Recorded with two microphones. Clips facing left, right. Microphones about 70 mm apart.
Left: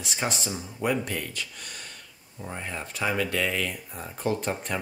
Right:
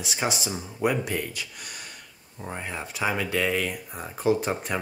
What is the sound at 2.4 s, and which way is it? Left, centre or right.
Speech, centre.